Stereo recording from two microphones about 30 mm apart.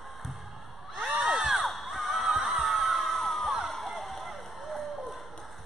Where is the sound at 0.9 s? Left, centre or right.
Right.